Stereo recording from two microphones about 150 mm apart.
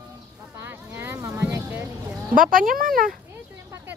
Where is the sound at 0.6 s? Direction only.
15° right (ahead or behind).